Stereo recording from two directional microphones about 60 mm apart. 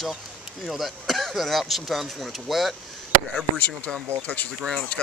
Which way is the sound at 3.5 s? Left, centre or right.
Left.